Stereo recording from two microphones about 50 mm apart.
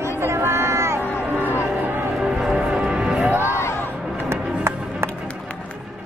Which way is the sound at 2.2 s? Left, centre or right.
Centre.